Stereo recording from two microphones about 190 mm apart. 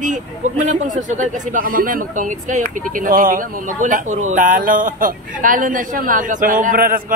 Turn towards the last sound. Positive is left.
turn(degrees=-50)  # may be behind; listen again after turning